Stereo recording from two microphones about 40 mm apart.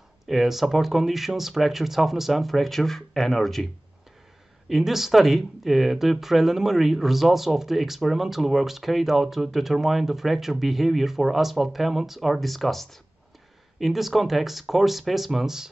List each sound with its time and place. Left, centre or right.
0.3 s speech: centre
4.6 s speech: centre